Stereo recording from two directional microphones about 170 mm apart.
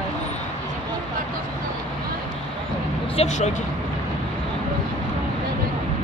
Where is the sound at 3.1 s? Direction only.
40° left (ahead or behind).